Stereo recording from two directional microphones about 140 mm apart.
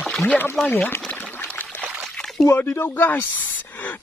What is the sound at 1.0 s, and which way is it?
Pour, 10° left (ahead or behind).